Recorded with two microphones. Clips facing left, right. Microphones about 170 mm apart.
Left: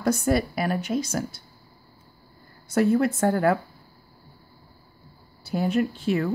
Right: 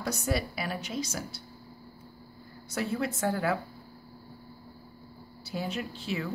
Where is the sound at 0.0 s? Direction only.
50° left (ahead or behind).